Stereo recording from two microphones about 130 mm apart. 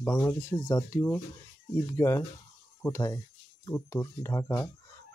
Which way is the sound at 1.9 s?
20° left (ahead or behind).